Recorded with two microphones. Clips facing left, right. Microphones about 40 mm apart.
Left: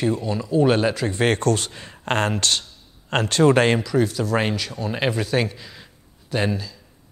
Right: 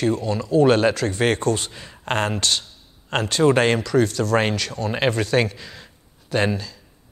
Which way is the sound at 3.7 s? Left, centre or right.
Centre.